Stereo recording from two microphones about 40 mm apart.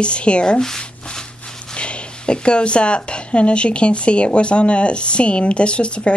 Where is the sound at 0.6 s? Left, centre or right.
Centre.